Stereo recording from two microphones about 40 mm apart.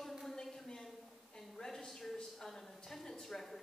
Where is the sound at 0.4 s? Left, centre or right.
Centre.